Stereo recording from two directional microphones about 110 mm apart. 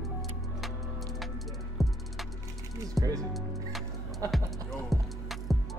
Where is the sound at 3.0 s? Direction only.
35° right (ahead or behind).